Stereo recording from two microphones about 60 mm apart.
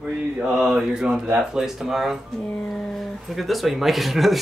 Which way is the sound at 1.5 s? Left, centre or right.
Centre.